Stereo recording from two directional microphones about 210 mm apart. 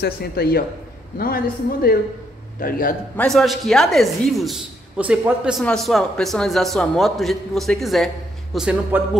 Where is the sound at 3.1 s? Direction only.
5° left (ahead or behind).